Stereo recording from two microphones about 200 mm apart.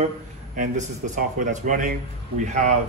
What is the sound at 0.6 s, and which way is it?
A man's voice, 40° right (ahead or behind).